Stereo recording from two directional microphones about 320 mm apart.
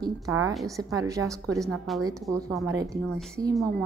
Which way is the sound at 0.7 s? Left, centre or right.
Centre.